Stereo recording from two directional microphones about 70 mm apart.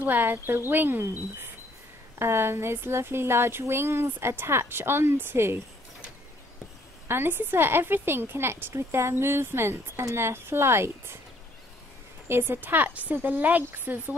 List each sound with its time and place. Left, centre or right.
0.0 s a woman's voice: right
7.1 s a woman's voice: right
12.3 s speech: right